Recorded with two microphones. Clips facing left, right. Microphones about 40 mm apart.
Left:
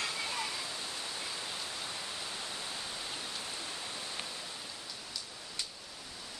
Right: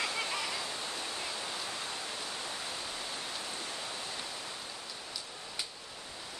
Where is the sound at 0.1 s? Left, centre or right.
Right.